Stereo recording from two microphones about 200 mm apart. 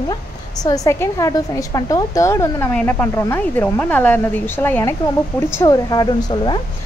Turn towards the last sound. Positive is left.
turn(degrees=20)  # may be behind; listen again after turning